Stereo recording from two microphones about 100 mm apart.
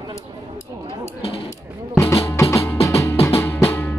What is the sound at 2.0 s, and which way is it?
Music, 30° left (ahead or behind).